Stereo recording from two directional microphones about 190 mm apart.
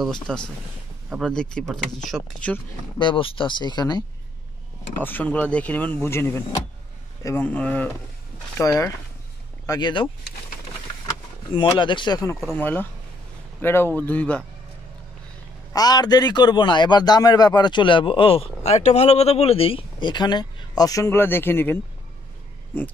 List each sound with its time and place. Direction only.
0.0 s speech: 5° left (ahead or behind)
3.0 s a man's voice: 25° left (ahead or behind)
5.0 s a man's voice: 10° left (ahead or behind)
11.1 s speech: 25° left (ahead or behind); by 14.4 s 10° left (ahead or behind)
15.7 s a man's voice: 20° left (ahead or behind)